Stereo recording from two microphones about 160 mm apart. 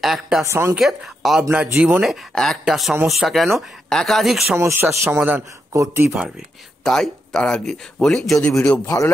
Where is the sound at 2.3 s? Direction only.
Centre (ahead or behind).